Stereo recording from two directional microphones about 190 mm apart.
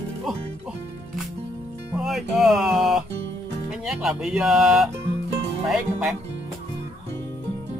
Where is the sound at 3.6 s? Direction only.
Centre (ahead or behind).